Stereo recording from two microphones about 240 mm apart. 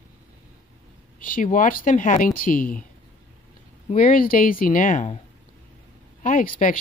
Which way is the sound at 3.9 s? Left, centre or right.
Left.